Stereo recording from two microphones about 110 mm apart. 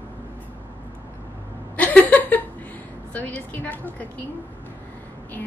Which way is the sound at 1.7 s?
15° left (ahead or behind).